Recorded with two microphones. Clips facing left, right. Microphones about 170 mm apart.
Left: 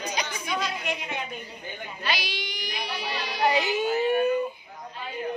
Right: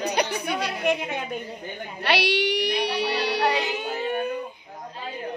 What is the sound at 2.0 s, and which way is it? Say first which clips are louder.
Music: right 10 dB; 70° right (ahead or behind).